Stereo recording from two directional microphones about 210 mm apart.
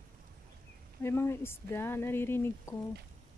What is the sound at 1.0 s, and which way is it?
Speech, 10° left (ahead or behind).